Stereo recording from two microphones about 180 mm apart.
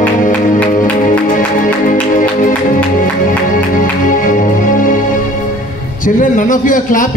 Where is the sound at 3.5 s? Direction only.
45° left (ahead or behind).